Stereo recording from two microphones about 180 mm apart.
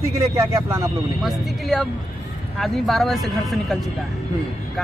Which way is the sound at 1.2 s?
Centre (ahead or behind).